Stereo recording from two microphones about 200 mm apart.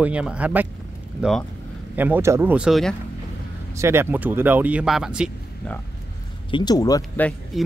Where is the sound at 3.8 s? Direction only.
15° right (ahead or behind).